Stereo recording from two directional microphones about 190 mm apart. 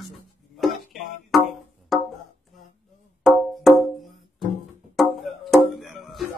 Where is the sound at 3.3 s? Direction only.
Centre (ahead or behind).